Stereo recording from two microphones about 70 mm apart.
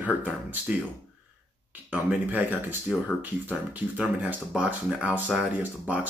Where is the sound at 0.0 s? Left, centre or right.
Right.